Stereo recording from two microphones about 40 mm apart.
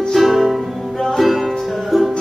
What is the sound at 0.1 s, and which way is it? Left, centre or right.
Music, centre.